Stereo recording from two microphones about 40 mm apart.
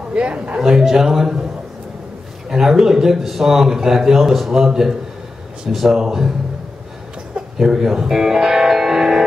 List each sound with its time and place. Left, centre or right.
0.1 s a man's voice: right
0.6 s a man's voice: centre
2.5 s a man's voice: centre
7.5 s a man's voice: centre